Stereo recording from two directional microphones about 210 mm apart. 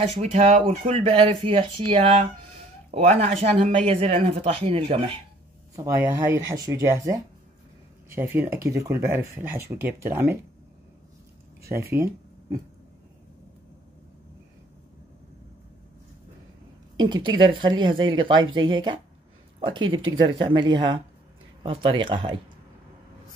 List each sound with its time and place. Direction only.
0.1 s speech: 30° right (ahead or behind)
6.0 s speech: 10° right (ahead or behind)
11.7 s speech: 10° right (ahead or behind)
16.9 s speech: 20° right (ahead or behind)